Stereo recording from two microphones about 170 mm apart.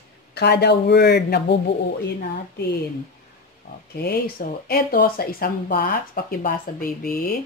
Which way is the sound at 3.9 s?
70° left (ahead or behind).